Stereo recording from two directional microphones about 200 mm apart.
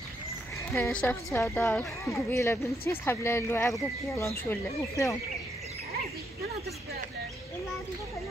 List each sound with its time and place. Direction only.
0.7 s a woman's voice: 15° left (ahead or behind)